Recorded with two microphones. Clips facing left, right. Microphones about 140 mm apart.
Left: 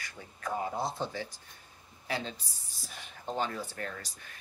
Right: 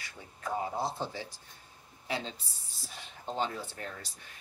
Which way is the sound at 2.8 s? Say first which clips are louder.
Left 1 dB; 25° right (ahead or behind).